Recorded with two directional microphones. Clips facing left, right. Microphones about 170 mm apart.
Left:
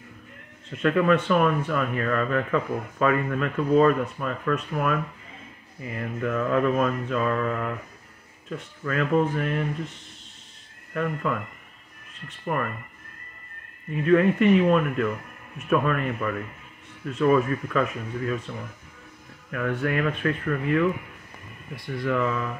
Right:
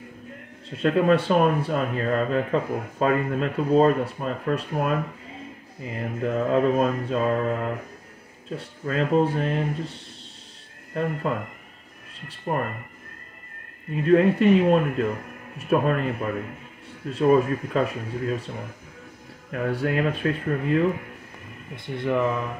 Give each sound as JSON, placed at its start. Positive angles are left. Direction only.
{"t": 0.8, "sound": "speech", "side_deg": -35}
{"t": 14.0, "sound": "speech", "side_deg": -35}
{"t": 19.5, "sound": "speech", "side_deg": -35}